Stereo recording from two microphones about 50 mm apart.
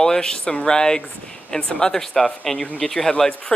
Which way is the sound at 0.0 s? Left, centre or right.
Centre.